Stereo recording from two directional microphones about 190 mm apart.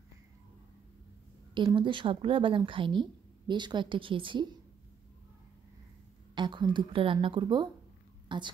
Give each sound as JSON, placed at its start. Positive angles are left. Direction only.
{"t": 1.5, "sound": "a woman's voice", "side_deg": -25}
{"t": 6.3, "sound": "a woman's voice", "side_deg": -25}